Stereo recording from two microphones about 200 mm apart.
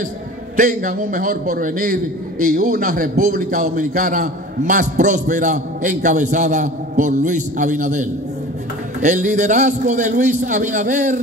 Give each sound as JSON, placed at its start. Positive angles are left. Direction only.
{"t": 0.6, "sound": "a man's voice", "side_deg": -40}